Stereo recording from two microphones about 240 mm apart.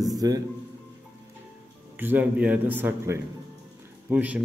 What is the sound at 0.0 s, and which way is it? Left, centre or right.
Music, centre.